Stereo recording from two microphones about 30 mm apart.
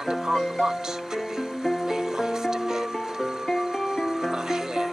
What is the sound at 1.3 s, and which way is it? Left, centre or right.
Music, centre.